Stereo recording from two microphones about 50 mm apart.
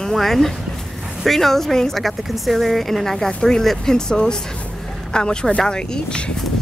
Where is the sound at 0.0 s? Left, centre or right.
Centre.